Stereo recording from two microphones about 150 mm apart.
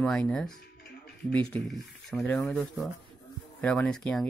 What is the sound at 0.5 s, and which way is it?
Music, 90° left.